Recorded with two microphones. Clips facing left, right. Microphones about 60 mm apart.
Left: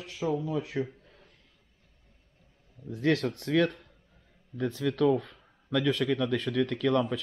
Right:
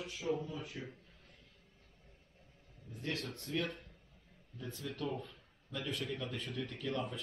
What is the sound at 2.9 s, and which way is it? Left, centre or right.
Speech, left.